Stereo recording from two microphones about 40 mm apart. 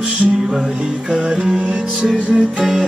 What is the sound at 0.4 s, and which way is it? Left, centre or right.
Music, centre.